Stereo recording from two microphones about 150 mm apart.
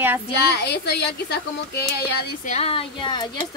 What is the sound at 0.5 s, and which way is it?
Speech, 90° left.